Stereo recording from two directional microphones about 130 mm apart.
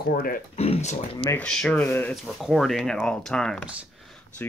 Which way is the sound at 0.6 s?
55° left (ahead or behind).